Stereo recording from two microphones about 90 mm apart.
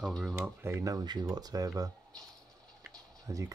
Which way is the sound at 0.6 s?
25° right (ahead or behind).